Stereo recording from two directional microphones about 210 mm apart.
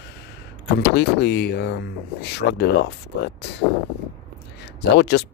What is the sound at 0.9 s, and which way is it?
Speech, 55° left (ahead or behind).